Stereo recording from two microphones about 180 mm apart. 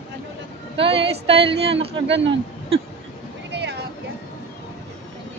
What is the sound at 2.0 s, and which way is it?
Speech, 85° right.